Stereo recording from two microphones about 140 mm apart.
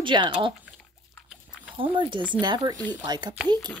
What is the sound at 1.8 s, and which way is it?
Speech, 35° right (ahead or behind).